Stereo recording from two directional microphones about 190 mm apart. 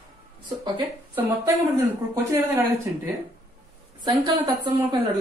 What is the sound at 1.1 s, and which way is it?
Speech, 15° right (ahead or behind).